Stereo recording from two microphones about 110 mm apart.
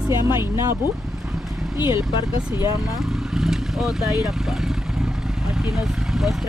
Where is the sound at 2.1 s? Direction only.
40° left (ahead or behind).